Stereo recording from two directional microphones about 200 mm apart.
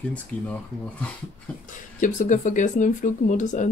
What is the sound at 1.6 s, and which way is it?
Speech, 40° left (ahead or behind).